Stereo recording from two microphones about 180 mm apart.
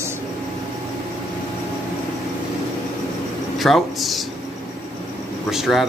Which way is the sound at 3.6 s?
Centre (ahead or behind).